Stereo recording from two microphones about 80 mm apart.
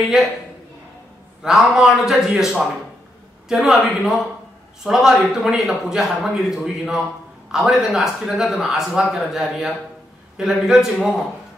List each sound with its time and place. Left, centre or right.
1.4 s a man's voice: centre